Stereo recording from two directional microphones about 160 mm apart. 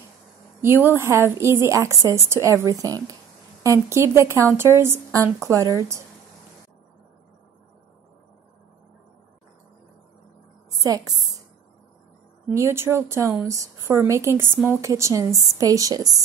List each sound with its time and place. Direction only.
0.6 s a woman's voice: 15° right (ahead or behind)
10.7 s a woman's voice: 20° right (ahead or behind)
12.4 s a woman's voice: 15° right (ahead or behind)